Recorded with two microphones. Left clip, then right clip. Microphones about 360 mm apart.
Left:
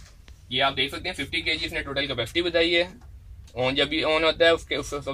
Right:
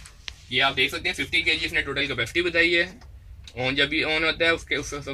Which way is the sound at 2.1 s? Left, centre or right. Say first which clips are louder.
Right 1 dB; left.